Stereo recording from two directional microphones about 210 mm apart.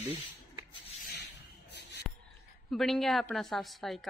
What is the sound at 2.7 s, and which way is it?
A woman's voice, centre (ahead or behind).